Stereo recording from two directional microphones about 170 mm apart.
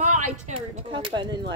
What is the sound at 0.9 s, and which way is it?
Speech, 30° right (ahead or behind).